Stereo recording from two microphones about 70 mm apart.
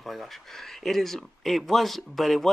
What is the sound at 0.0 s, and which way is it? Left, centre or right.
Speech, centre.